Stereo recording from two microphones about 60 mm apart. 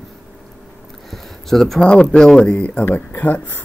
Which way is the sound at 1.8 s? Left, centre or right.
Centre.